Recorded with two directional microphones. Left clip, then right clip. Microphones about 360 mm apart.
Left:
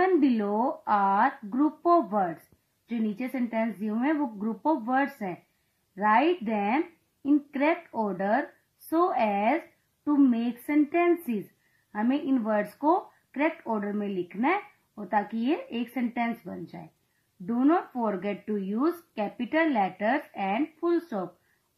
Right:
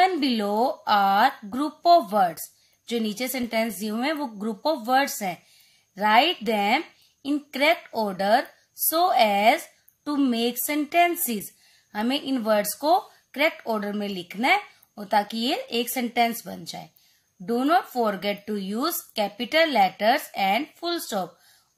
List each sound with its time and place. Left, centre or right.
0.0 s speech: right